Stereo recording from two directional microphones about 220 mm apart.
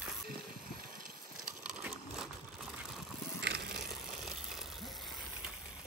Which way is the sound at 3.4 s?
50° right (ahead or behind).